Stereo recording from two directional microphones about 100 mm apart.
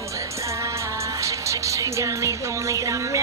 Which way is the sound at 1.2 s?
30° right (ahead or behind).